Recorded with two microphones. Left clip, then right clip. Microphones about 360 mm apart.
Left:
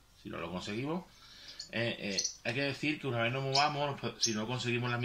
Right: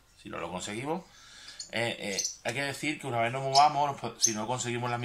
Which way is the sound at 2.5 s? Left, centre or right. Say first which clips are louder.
Left 1 dB; centre.